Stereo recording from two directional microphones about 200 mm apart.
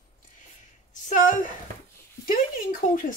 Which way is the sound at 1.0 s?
40° left (ahead or behind).